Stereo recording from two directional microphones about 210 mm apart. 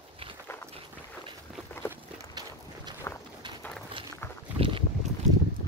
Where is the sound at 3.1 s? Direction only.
10° left (ahead or behind).